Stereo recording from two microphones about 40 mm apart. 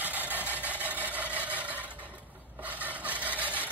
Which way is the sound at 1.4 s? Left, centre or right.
Right.